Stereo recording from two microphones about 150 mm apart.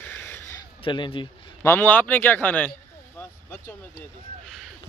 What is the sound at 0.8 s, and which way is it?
Speech, 35° left (ahead or behind).